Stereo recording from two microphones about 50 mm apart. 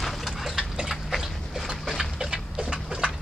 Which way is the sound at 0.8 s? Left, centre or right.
Centre.